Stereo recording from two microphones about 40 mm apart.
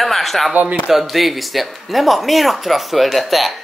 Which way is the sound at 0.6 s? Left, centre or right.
Right.